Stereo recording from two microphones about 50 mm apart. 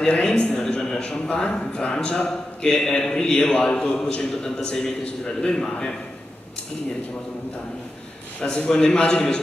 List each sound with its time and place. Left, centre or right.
0.0 s a sound: centre
0.6 s a man's voice: centre
8.4 s a man's voice: left